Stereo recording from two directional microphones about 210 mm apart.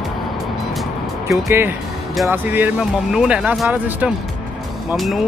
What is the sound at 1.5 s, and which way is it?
Speech, 10° right (ahead or behind).